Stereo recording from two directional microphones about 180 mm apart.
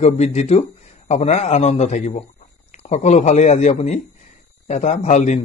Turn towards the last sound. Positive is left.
turn(degrees=40)  # may be behind; listen again after turning